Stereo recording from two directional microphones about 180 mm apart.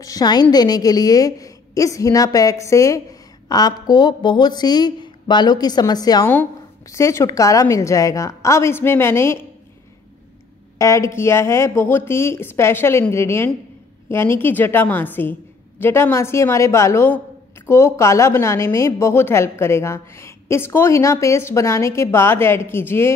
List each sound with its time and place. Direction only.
0.0 s a woman's voice: 20° left (ahead or behind)
10.8 s a woman's voice: 15° left (ahead or behind)